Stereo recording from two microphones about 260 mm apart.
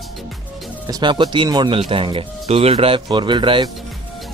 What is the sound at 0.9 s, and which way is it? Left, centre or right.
Speech, centre.